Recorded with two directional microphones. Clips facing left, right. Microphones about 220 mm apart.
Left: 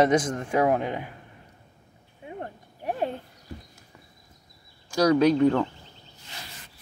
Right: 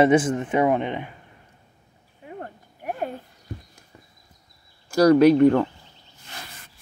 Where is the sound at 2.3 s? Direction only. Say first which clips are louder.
Even; 25° left (ahead or behind).